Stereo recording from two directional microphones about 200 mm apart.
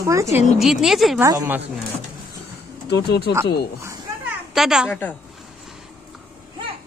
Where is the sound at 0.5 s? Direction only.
Centre (ahead or behind).